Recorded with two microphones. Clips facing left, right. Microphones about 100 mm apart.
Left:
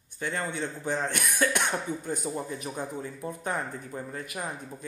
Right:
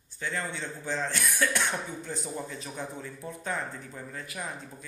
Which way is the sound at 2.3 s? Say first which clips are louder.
Left 4 dB; 30° left (ahead or behind).